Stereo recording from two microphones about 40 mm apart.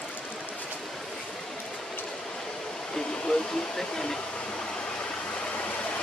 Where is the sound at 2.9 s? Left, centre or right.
Centre.